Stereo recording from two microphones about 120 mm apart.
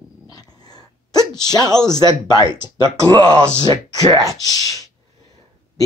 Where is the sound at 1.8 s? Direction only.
35° left (ahead or behind).